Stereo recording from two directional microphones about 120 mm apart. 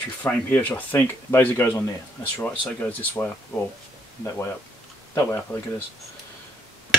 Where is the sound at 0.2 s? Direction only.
15° left (ahead or behind).